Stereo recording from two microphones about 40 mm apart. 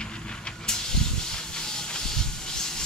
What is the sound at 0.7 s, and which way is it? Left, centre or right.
Hiss, centre.